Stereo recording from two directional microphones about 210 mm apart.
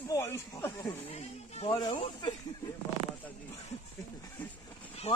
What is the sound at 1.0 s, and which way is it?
Speech, 30° left (ahead or behind).